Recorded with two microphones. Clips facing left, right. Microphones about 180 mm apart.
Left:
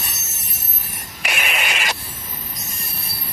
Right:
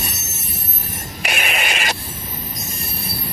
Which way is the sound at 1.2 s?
35° right (ahead or behind).